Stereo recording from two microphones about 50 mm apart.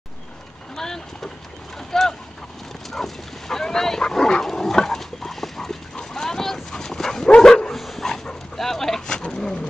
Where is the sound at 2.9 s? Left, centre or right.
Centre.